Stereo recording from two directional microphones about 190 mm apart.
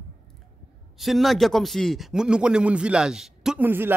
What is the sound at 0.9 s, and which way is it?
A man's voice, centre (ahead or behind).